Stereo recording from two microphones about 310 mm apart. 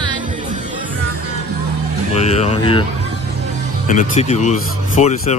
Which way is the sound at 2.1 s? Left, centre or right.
Left.